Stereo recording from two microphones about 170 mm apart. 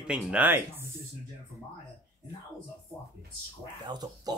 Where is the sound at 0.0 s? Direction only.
5° right (ahead or behind).